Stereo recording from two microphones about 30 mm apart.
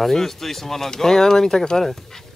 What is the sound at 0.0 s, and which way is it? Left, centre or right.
Speech, centre.